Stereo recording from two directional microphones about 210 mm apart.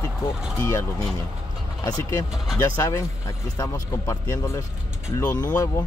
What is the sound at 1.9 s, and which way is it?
Speech, 15° left (ahead or behind).